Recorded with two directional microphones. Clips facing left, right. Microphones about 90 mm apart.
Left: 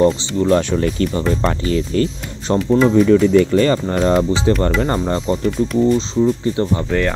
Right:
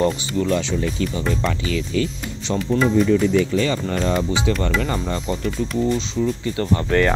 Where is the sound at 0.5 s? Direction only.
50° left (ahead or behind).